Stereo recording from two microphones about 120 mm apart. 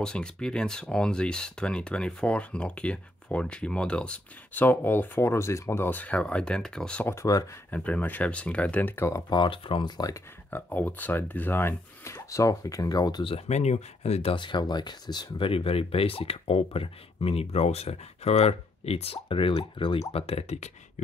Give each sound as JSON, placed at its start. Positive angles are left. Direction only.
{"t": 0.0, "sound": "speech", "side_deg": 5}
{"t": 7.1, "sound": "speech", "side_deg": 25}
{"t": 7.7, "sound": "speech", "side_deg": 10}
{"t": 9.3, "sound": "speech", "side_deg": 40}
{"t": 10.5, "sound": "speech", "side_deg": 15}
{"t": 13.5, "sound": "speech", "side_deg": 70}
{"t": 14.3, "sound": "speech", "side_deg": 40}